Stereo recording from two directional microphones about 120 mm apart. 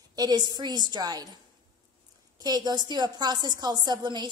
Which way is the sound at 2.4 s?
35° right (ahead or behind).